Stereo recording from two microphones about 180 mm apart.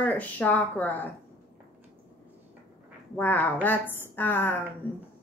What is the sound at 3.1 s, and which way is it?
Speech, 10° left (ahead or behind).